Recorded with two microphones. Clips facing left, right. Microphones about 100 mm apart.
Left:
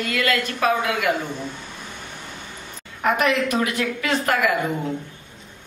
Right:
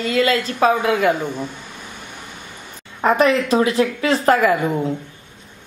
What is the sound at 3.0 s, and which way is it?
Speech, 30° right (ahead or behind).